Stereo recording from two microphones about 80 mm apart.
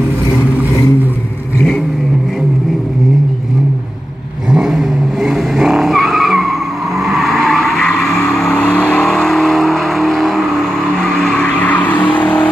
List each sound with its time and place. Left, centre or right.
4.5 s vehicle: centre
11.4 s vehicle: centre